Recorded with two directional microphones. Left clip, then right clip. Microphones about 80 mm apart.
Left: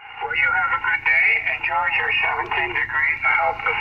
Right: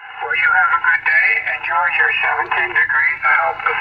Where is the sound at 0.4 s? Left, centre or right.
Right.